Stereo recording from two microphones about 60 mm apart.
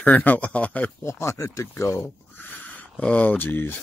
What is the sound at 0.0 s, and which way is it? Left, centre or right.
Speech, left.